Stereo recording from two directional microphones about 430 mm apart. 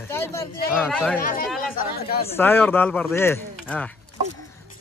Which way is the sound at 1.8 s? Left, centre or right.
Left.